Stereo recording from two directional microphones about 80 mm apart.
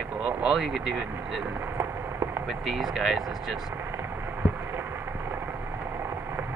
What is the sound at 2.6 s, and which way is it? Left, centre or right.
Speech, centre.